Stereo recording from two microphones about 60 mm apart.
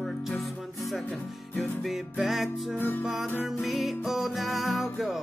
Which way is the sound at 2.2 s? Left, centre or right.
Centre.